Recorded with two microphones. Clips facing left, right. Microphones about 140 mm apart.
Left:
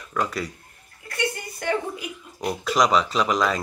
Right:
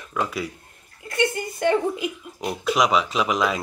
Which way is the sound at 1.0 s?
20° right (ahead or behind).